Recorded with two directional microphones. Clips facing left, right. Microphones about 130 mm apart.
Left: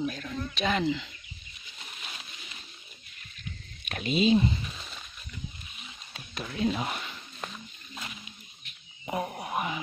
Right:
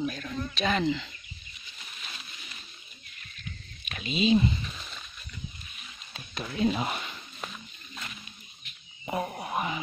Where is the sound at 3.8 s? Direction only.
55° left (ahead or behind).